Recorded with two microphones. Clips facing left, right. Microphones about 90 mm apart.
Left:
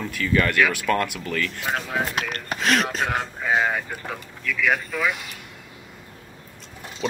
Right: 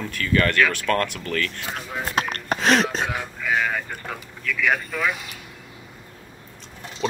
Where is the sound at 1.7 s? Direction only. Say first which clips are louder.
Left 5 dB; 75° left (ahead or behind).